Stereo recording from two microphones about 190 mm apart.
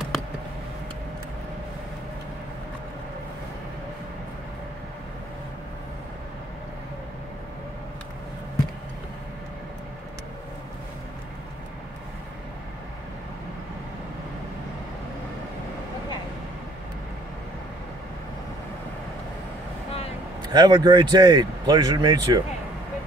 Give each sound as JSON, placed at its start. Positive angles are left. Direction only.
{"t": 20.5, "sound": "speech", "side_deg": -20}